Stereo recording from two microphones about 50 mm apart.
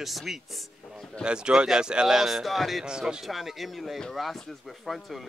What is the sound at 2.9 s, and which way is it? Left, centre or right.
Speech, centre.